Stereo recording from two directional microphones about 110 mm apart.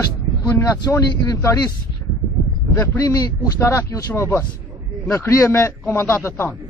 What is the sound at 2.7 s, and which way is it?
Speech, 25° left (ahead or behind).